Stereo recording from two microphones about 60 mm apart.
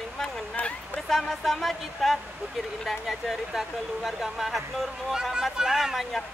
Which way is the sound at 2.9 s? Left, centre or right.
Centre.